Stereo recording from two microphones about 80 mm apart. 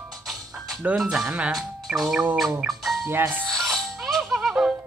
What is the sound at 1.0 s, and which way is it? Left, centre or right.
Speech, centre.